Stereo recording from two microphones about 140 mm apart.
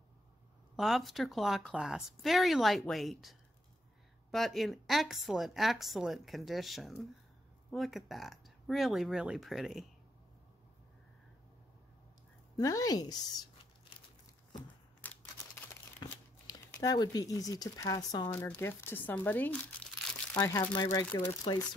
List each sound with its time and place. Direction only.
0.7 s a woman's voice: centre (ahead or behind)
12.5 s speech: 25° left (ahead or behind)
15.0 s a sound: 15° left (ahead or behind)
16.0 s speech: 25° left (ahead or behind)
18.3 s speech: 15° left (ahead or behind)
20.7 s speech: 30° left (ahead or behind)
21.5 s speech: 40° left (ahead or behind)